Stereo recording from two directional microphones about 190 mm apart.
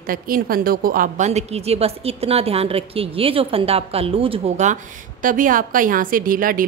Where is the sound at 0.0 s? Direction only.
50° right (ahead or behind).